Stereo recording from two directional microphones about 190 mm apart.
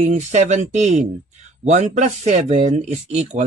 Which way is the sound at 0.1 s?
35° right (ahead or behind).